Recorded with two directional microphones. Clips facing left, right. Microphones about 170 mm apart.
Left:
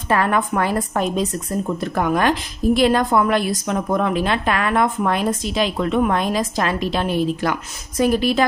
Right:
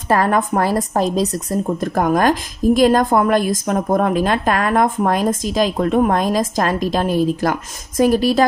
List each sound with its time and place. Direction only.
0.1 s a woman's voice: 40° right (ahead or behind)